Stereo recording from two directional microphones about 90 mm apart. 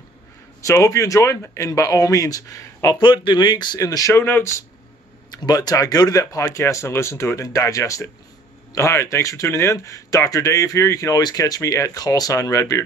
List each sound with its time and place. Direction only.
0.6 s speech: 35° left (ahead or behind)
3.0 s speech: 60° left (ahead or behind)
3.8 s speech: 40° left (ahead or behind)
4.1 s speech: 25° left (ahead or behind)
5.3 s speech: 45° left (ahead or behind)